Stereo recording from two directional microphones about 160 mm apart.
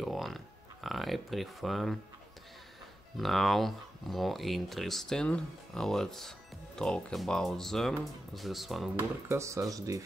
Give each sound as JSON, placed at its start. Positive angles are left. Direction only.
{"t": 0.0, "sound": "speech", "side_deg": 0}
{"t": 3.2, "sound": "speech", "side_deg": 0}
{"t": 9.3, "sound": "speech", "side_deg": -20}